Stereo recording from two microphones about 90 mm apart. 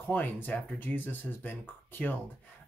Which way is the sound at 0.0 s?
20° left (ahead or behind).